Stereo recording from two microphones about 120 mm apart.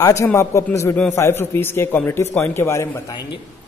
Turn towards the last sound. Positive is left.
turn(degrees=20)  # may be behind; listen again after turning